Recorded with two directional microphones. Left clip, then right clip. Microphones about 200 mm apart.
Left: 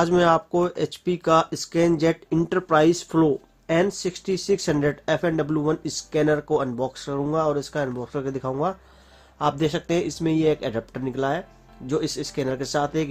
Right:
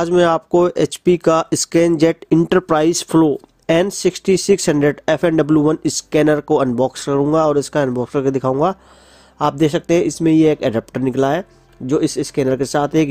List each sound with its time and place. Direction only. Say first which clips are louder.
0.0 s speech: right 4 dB; 40° right (ahead or behind)